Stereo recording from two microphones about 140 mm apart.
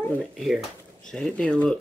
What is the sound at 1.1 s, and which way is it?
Speech, 5° left (ahead or behind).